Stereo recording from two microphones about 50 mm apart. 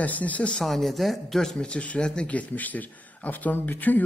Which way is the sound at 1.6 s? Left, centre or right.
Left.